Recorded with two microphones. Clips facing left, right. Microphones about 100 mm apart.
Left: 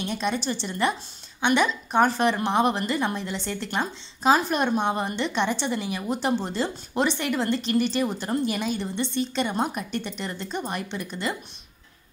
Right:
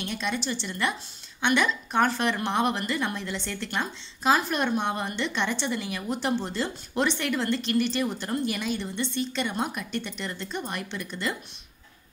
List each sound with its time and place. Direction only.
0.0 s a woman's voice: 25° left (ahead or behind)